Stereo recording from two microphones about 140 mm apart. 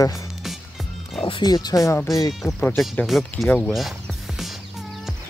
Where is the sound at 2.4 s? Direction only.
Centre (ahead or behind).